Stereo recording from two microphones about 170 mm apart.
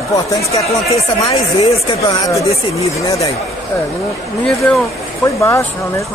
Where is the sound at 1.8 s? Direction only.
25° left (ahead or behind).